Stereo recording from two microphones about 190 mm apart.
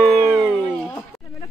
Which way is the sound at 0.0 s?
Centre (ahead or behind).